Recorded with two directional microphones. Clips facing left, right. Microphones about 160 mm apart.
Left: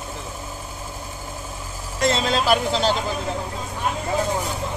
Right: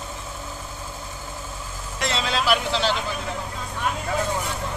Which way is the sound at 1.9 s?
40° left (ahead or behind).